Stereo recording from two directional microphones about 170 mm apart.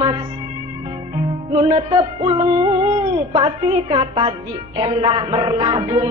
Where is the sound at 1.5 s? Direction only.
30° right (ahead or behind).